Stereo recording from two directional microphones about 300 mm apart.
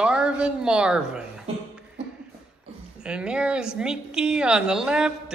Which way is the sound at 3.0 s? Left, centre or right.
Centre.